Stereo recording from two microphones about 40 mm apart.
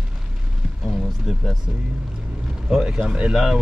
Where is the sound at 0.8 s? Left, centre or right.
Centre.